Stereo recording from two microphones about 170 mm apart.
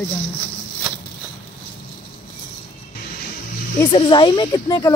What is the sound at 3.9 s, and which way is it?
Speech, 30° left (ahead or behind).